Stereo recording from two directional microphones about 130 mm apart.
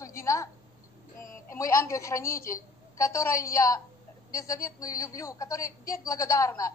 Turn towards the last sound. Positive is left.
turn(degrees=25)  # may be behind; listen again after turning